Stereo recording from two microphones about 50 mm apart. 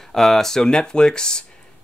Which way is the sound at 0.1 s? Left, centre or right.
Centre.